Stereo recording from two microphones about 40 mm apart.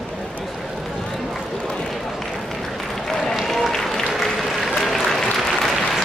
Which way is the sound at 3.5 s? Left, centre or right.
Centre.